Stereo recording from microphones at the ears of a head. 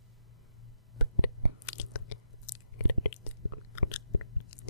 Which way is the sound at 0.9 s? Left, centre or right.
Left.